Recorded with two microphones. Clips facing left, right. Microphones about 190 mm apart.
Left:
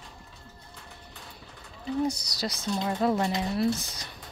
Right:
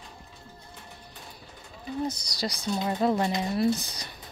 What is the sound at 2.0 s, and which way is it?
Speech, 5° left (ahead or behind).